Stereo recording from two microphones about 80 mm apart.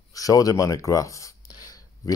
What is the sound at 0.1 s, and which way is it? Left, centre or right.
Speech, left.